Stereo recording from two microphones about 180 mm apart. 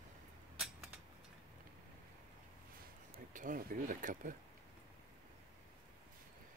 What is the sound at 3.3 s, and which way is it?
Speech, 50° right (ahead or behind).